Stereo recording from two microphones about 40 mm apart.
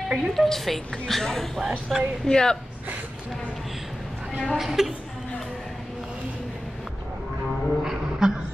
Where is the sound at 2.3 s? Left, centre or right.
Centre.